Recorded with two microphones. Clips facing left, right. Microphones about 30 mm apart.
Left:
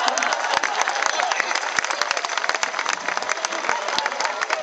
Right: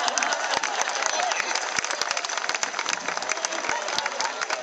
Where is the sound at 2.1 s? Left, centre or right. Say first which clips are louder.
Left 4 dB; left.